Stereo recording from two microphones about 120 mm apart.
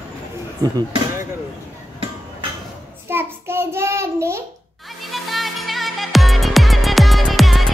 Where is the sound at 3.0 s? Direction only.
20° right (ahead or behind).